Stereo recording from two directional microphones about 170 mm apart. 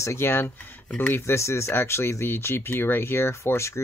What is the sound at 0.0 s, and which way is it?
Speech, 15° left (ahead or behind).